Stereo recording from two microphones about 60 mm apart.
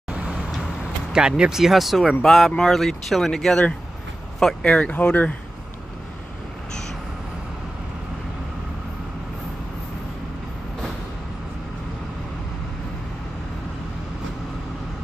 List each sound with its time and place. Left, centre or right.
0.1 s vehicle: centre
1.1 s speech: centre
4.7 s speech: left